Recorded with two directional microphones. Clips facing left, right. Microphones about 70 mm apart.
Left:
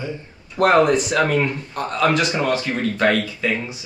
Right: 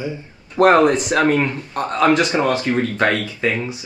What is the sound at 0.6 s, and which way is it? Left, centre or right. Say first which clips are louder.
Speech: right 2 dB; right.